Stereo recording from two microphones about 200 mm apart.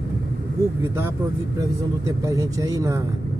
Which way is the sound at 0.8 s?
10° right (ahead or behind).